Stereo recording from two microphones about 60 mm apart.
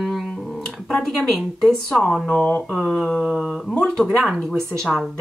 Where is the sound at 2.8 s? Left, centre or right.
Centre.